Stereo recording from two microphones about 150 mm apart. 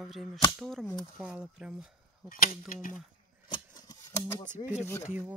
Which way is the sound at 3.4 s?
20° left (ahead or behind).